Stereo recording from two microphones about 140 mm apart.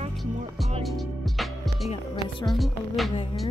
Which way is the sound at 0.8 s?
Centre (ahead or behind).